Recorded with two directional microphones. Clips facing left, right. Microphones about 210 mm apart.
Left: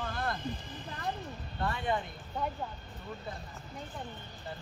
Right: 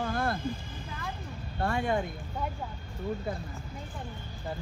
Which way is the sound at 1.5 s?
45° right (ahead or behind).